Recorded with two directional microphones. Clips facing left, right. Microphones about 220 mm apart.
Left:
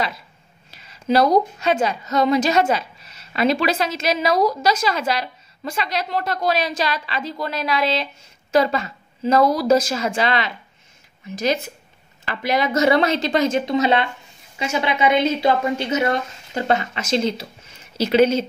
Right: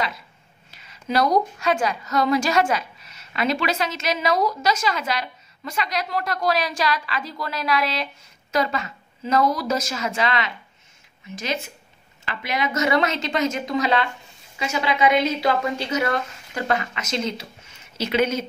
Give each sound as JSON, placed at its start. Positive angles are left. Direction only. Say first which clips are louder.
{"t": 0.7, "sound": "a woman's voice", "louder": "left 8 dB", "side_deg": 35}